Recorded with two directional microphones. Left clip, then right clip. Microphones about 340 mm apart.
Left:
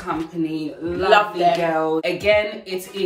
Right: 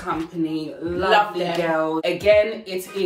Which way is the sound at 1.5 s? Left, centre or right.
Centre.